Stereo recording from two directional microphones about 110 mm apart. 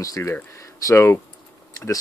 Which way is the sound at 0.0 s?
30° left (ahead or behind).